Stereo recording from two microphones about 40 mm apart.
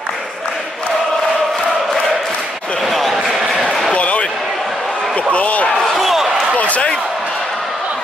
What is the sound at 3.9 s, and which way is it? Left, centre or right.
Basketball bounce, left.